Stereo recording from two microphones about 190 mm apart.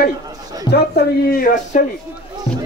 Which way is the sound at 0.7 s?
60° left (ahead or behind).